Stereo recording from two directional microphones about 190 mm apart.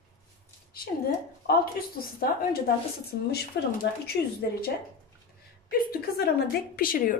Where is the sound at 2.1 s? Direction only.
50° left (ahead or behind).